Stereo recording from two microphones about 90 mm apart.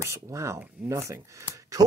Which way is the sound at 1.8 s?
45° right (ahead or behind).